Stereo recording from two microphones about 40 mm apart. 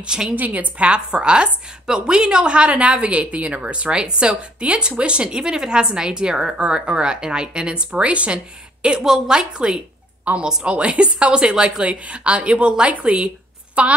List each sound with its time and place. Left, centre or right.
0.0 s a woman's voice: centre
0.4 s a woman's voice: right
9.0 s a woman's voice: centre
10.3 s a woman's voice: right